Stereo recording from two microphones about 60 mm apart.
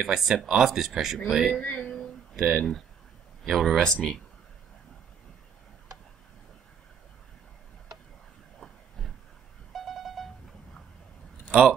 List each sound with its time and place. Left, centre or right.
0.0 s speech: centre
1.6 s speech: left
1.9 s a sound: centre
3.4 s speech: centre
8.5 s train: centre
9.7 s a sound: centre